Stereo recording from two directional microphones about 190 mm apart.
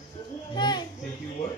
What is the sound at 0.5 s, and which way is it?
Speech, 25° left (ahead or behind).